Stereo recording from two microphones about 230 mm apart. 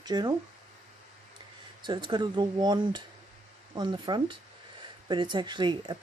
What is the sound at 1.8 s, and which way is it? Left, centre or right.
Speech, centre.